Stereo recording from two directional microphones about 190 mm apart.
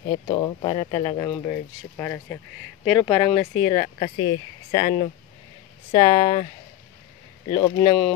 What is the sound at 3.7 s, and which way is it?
Speech, 30° left (ahead or behind).